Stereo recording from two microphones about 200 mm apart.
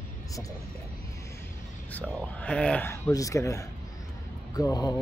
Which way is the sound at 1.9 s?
5° left (ahead or behind).